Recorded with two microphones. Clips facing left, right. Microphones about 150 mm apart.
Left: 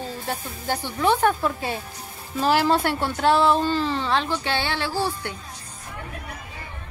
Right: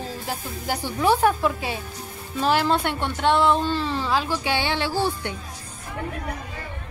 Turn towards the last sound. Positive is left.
turn(degrees=-20)  # may be behind; listen again after turning